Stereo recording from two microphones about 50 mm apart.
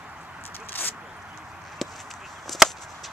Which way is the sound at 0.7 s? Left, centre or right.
Left.